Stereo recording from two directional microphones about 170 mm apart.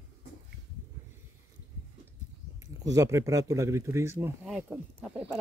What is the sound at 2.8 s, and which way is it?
Speech, 20° right (ahead or behind).